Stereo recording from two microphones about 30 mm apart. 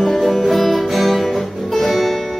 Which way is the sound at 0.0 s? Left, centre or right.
Centre.